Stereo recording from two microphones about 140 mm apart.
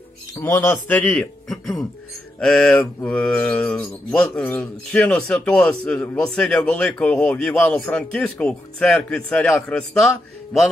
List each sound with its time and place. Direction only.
0.4 s speech: 20° left (ahead or behind)